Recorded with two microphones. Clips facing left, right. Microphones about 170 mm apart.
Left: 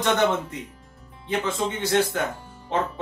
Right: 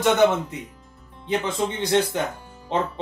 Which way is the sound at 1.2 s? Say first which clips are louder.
Right 1 dB; 20° right (ahead or behind).